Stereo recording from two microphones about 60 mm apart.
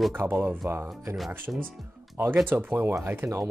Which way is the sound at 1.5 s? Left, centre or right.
Right.